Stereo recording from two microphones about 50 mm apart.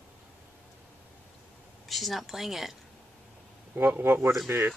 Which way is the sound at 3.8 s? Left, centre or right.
Right.